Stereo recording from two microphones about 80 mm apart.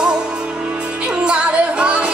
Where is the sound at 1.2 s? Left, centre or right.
Centre.